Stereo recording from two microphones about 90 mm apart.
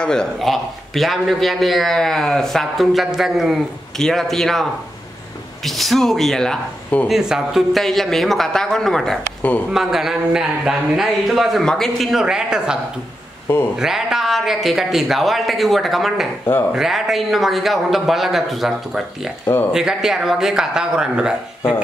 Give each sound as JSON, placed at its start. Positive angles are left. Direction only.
{"t": 0.0, "sound": "a man's voice", "side_deg": 10}
{"t": 7.1, "sound": "a man's voice", "side_deg": -5}
{"t": 13.7, "sound": "a man's voice", "side_deg": -5}
{"t": 19.4, "sound": "speech", "side_deg": 25}
{"t": 19.7, "sound": "speech", "side_deg": -5}